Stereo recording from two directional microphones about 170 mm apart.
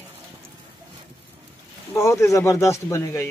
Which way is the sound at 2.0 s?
15° left (ahead or behind).